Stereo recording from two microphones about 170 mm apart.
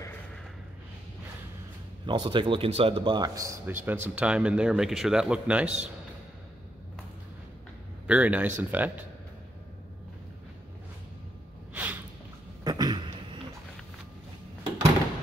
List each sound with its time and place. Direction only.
2.0 s a man's voice: 25° right (ahead or behind); by 5.8 s 5° right (ahead or behind)
8.1 s speech: 10° right (ahead or behind)
11.7 s snort: 10° right (ahead or behind)
12.6 s a sound: 25° right (ahead or behind)